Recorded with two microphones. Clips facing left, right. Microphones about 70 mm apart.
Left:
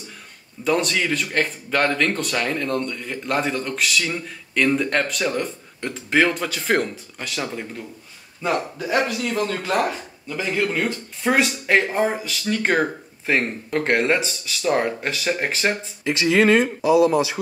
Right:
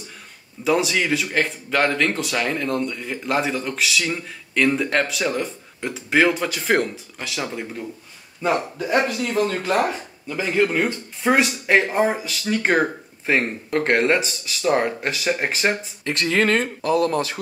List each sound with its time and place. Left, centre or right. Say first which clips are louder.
0.7 s speech: right 1 dB; centre
11.2 s speech: right 1 dB; centre
16.0 s speech: left 4 dB; centre